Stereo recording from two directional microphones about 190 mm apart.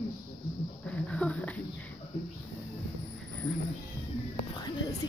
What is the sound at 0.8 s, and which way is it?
Speech, 5° left (ahead or behind).